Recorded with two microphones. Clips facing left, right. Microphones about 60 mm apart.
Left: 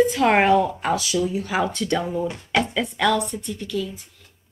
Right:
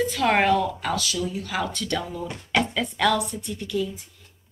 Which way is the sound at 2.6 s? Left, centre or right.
Centre.